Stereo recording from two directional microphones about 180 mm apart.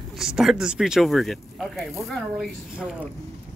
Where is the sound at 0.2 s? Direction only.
Centre (ahead or behind).